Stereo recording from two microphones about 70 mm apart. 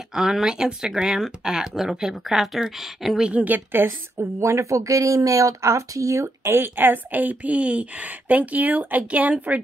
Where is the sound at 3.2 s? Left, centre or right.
Centre.